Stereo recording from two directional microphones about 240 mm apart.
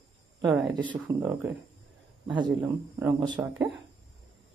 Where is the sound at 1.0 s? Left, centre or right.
Centre.